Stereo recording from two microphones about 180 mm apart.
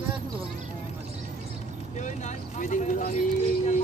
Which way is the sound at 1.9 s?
40° left (ahead or behind).